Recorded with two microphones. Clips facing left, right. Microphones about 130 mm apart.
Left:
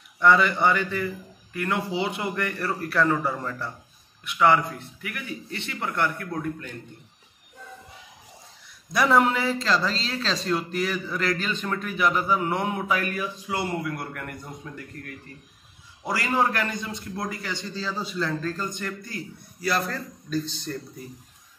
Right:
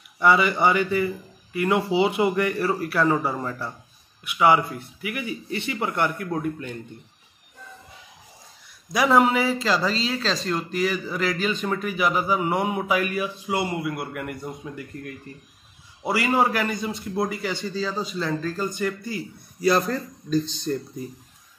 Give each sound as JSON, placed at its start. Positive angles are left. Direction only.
{"t": 0.2, "sound": "a man's voice", "side_deg": -10}
{"t": 8.9, "sound": "a man's voice", "side_deg": -5}
{"t": 16.0, "sound": "a man's voice", "side_deg": -10}
{"t": 17.6, "sound": "a man's voice", "side_deg": 0}
{"t": 19.6, "sound": "a man's voice", "side_deg": -20}